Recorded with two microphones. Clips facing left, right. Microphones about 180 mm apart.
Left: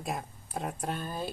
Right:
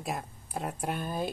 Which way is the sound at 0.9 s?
15° right (ahead or behind).